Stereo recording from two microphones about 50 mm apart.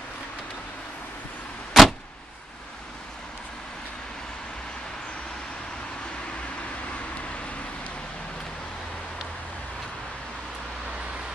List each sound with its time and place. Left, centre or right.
1.7 s vehicle: centre